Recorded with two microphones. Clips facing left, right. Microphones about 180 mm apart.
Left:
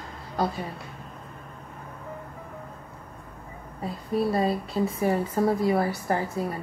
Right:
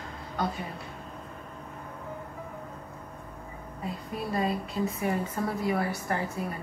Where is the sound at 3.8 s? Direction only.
30° left (ahead or behind).